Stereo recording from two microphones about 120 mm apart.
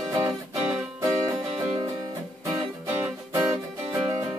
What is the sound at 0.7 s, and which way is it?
Music, 25° right (ahead or behind).